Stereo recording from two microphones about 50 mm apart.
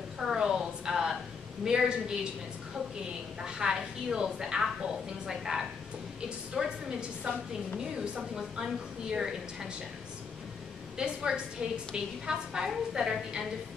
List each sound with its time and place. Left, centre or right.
0.2 s a sound: centre
1.6 s a woman's voice: centre
3.4 s a woman's voice: centre
11.0 s a woman's voice: centre